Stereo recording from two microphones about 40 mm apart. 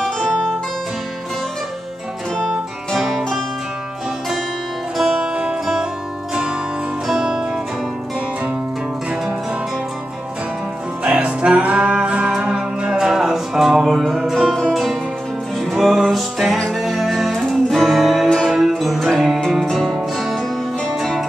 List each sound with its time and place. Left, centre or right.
2.9 s music: centre
5.1 s music: right
7.1 s music: centre
11.1 s music: right
14.7 s music: centre